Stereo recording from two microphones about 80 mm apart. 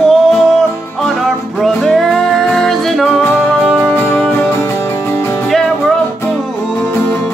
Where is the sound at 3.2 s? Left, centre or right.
Left.